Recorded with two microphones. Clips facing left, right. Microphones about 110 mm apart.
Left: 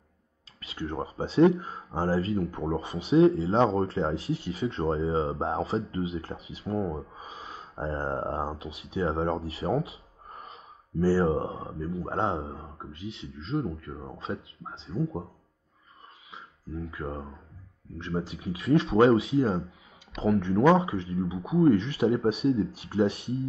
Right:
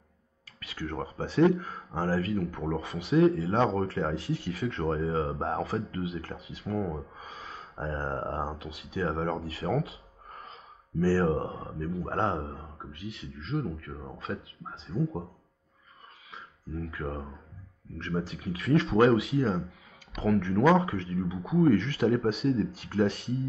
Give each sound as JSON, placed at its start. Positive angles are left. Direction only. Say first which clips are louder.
{"t": 0.6, "sound": "speech", "louder": "left 2 dB", "side_deg": 25}
{"t": 12.3, "sound": "speech", "louder": "left 1 dB", "side_deg": 0}
{"t": 12.5, "sound": "speech", "louder": "left 2 dB", "side_deg": 25}
{"t": 15.0, "sound": "speech", "louder": "left 1 dB", "side_deg": 0}
{"t": 16.6, "sound": "speech", "louder": "even", "side_deg": 0}
{"t": 17.9, "sound": "speech", "louder": "left 1 dB", "side_deg": 20}